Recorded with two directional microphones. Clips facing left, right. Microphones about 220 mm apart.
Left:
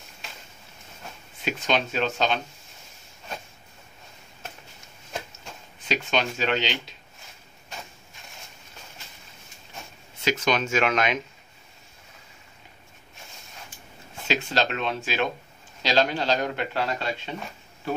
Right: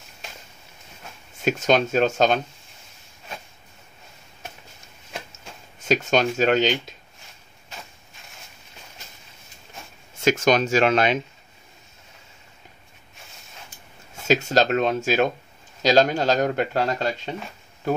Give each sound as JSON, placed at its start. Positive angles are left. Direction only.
{"t": 1.4, "sound": "speech", "side_deg": -45}
{"t": 5.8, "sound": "speech", "side_deg": -45}
{"t": 10.2, "sound": "speech", "side_deg": -45}
{"t": 14.2, "sound": "speech", "side_deg": -45}